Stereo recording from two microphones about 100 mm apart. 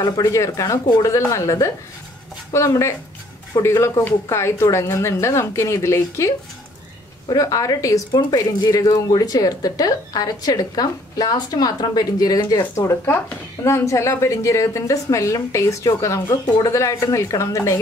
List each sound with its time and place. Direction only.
0.0 s speech: 35° left (ahead or behind)
1.0 s a woman's voice: 30° left (ahead or behind)